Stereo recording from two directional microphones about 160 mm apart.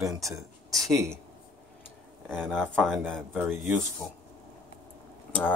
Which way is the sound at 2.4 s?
10° right (ahead or behind).